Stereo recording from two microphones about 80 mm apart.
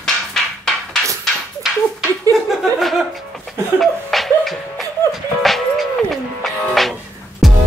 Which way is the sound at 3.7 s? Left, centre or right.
Centre.